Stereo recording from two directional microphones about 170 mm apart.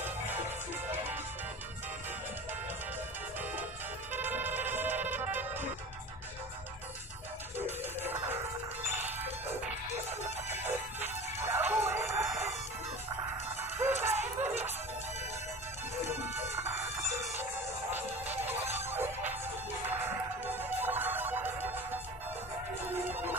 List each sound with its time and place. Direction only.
4.1 s music: 10° right (ahead or behind)
7.5 s music: 10° right (ahead or behind)
11.4 s music: 15° right (ahead or behind)
11.9 s a sound: 15° right (ahead or behind)
13.6 s music: 15° right (ahead or behind)
16.3 s chicken: 15° right (ahead or behind)
17.9 s music: 10° right (ahead or behind)
20.5 s music: 10° right (ahead or behind)
22.8 s music: 10° right (ahead or behind)